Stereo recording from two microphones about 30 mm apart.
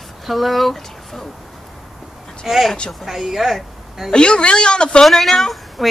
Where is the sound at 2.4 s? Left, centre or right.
Centre.